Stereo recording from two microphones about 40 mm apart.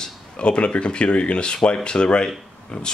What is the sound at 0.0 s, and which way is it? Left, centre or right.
Speech, left.